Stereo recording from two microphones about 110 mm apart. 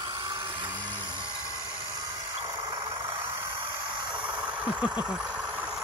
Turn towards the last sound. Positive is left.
turn(degrees=-10)  # may be behind; listen again after turning